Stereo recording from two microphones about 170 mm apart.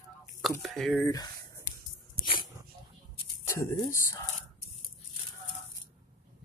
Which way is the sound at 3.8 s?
15° left (ahead or behind).